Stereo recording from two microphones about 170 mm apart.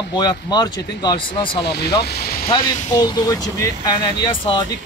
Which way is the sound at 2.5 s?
25° left (ahead or behind).